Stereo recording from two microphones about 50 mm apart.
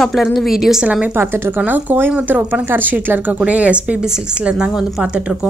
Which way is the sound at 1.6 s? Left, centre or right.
Right.